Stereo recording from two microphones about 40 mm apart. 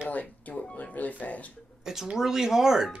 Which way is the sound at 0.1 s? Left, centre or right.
Left.